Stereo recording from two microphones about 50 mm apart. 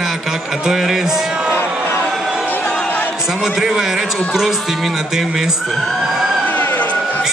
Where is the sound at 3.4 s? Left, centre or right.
Centre.